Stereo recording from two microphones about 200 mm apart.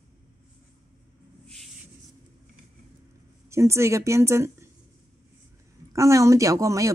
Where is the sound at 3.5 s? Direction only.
15° right (ahead or behind).